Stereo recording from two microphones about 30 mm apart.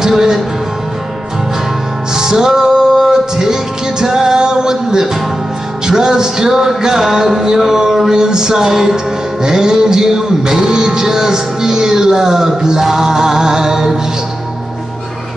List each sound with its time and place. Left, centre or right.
0.0 s music: centre
2.1 s music: centre
8.1 s music: right